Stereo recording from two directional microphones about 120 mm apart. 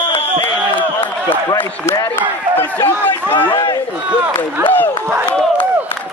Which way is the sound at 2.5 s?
15° left (ahead or behind).